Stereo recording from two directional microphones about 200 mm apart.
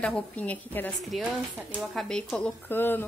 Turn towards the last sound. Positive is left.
turn(degrees=10)  # may be behind; listen again after turning